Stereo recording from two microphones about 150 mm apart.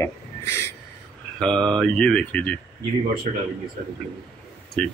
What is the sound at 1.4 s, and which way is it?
Speech, 5° left (ahead or behind).